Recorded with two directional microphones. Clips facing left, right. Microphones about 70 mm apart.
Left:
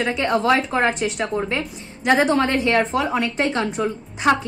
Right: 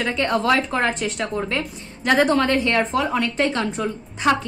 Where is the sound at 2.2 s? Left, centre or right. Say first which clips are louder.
Even; centre.